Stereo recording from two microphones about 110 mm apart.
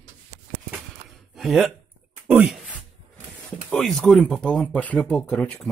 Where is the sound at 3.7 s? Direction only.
5° left (ahead or behind).